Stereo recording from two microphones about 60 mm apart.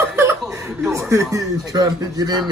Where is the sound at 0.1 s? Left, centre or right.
Right.